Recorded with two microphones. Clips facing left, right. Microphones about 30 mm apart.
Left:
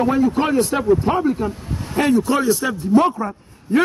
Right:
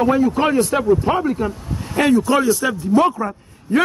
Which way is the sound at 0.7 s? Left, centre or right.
Right.